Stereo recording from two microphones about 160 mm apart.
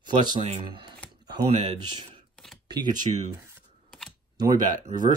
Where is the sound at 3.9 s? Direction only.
Centre (ahead or behind).